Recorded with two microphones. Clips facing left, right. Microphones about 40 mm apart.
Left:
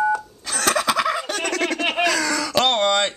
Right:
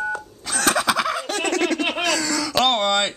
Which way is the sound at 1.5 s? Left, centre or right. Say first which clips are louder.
Right 2 dB; centre.